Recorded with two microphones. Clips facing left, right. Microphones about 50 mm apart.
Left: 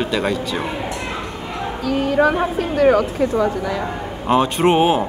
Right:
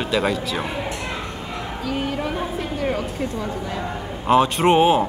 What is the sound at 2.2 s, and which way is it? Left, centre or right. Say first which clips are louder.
Speech: left 9 dB; left.